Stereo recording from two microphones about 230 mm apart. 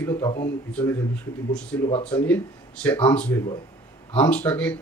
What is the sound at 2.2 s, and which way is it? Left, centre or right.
Speech, centre.